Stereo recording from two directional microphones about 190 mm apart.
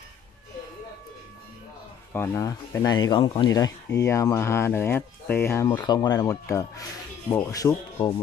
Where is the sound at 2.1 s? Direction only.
15° left (ahead or behind).